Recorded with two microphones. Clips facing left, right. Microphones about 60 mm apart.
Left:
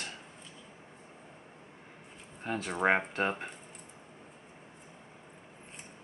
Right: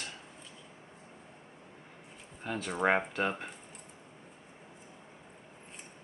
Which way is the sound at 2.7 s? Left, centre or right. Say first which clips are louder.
Even; centre.